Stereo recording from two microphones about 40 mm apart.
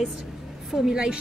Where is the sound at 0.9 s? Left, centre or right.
Centre.